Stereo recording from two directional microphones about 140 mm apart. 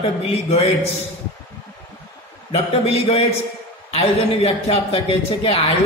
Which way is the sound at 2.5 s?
45° left (ahead or behind).